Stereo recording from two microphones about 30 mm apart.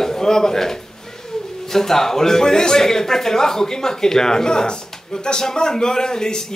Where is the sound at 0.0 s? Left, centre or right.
Centre.